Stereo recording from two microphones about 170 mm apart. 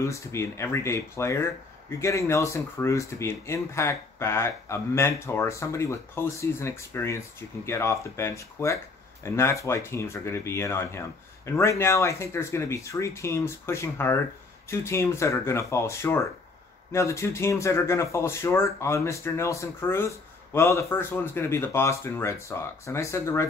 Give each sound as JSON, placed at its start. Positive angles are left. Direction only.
{"t": 0.0, "sound": "speech", "side_deg": 15}